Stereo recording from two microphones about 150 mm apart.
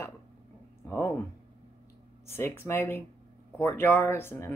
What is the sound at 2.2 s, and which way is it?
Speech, 15° left (ahead or behind).